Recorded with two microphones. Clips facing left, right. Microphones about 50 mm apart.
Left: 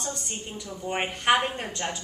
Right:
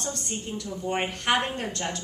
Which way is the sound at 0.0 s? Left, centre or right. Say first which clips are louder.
Right 2 dB; centre.